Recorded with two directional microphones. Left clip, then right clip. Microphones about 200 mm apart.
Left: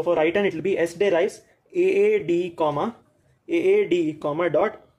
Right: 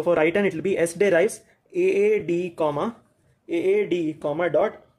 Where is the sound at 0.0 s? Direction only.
20° right (ahead or behind).